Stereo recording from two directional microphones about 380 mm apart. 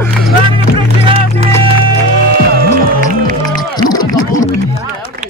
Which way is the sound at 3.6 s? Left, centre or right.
Centre.